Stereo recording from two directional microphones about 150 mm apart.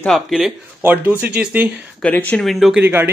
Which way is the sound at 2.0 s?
10° left (ahead or behind).